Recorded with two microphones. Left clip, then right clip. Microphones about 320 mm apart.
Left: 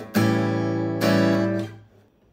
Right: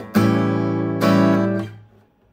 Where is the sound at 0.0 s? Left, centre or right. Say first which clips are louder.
Right 3 dB; centre.